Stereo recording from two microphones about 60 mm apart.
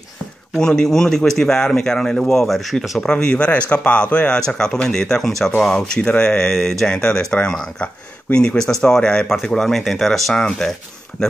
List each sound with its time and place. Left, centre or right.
0.6 s speech: centre
3.0 s speech: centre